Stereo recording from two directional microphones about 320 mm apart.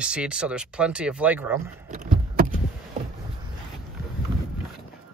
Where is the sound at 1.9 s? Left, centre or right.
Right.